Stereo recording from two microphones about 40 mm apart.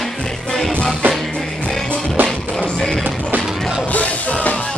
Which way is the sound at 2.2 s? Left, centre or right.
Right.